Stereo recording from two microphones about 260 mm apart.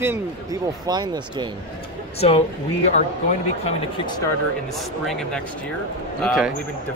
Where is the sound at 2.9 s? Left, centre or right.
Left.